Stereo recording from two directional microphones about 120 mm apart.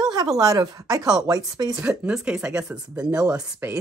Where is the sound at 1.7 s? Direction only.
10° right (ahead or behind).